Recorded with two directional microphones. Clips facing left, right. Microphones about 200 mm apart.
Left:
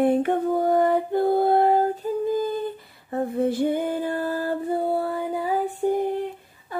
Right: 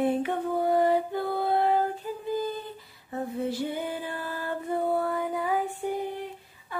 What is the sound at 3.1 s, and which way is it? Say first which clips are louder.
Music: left 7 dB; 55° left (ahead or behind).